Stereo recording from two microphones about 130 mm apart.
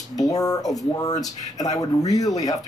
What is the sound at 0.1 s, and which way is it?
Speech, 25° left (ahead or behind).